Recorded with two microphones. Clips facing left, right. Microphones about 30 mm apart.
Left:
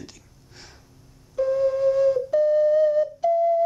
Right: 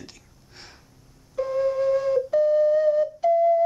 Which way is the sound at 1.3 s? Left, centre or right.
Centre.